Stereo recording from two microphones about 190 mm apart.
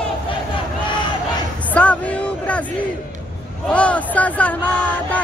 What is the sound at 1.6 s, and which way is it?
Speech, 5° left (ahead or behind).